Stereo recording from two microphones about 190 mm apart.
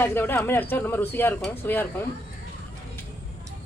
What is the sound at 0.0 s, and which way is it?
Speech, 10° left (ahead or behind).